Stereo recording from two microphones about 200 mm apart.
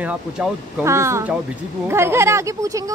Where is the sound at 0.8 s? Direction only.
15° right (ahead or behind).